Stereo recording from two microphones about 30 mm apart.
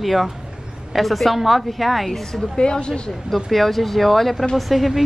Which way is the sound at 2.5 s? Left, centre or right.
Left.